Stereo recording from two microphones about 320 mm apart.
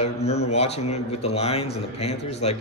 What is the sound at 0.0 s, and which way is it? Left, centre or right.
A man's voice, left.